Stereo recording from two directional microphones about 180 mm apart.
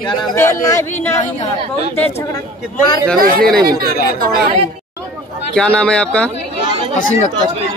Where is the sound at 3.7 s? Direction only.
55° right (ahead or behind).